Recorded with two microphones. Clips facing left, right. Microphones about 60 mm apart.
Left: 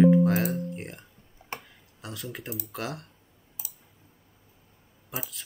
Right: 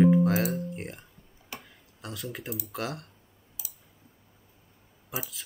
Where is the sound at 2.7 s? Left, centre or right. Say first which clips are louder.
Even; centre.